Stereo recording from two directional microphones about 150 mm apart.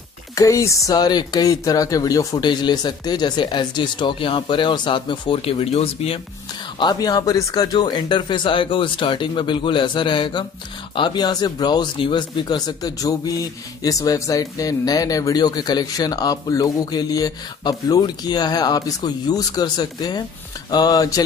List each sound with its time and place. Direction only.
0.4 s speech: 20° left (ahead or behind); by 6.2 s 40° left (ahead or behind)
6.8 s speech: 25° left (ahead or behind)